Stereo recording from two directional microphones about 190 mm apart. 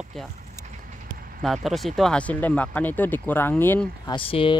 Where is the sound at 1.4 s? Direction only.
Centre (ahead or behind).